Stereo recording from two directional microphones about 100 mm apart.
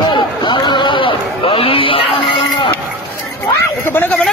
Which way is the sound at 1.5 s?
65° left (ahead or behind).